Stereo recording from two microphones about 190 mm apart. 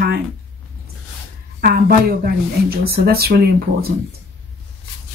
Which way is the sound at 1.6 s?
50° right (ahead or behind).